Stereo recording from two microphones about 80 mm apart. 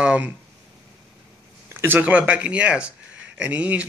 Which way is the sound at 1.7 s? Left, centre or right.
Right.